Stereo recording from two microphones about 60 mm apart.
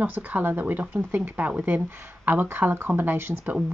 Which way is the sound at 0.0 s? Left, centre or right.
Right.